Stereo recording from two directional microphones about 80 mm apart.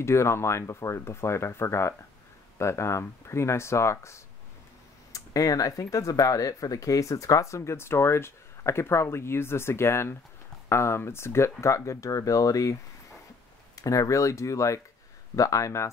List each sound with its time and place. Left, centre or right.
0.0 s speech: left
5.1 s speech: left
13.7 s speech: left